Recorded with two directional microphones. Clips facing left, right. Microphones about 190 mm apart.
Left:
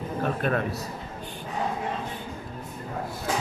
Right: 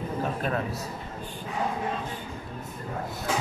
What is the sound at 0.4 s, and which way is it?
Speech, 65° left (ahead or behind).